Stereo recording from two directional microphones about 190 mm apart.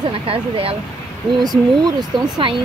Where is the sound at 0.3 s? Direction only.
30° right (ahead or behind).